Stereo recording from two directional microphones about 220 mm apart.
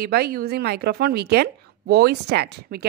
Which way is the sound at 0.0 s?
45° right (ahead or behind).